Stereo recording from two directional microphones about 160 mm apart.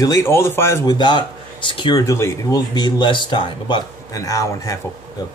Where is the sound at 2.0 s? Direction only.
20° left (ahead or behind).